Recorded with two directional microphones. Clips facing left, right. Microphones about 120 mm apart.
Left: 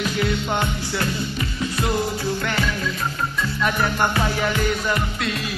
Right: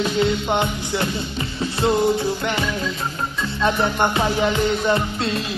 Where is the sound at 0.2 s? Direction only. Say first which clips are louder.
Right 3 dB; 20° right (ahead or behind).